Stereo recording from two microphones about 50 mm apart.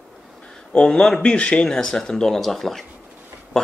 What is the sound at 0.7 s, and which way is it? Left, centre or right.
Speech, centre.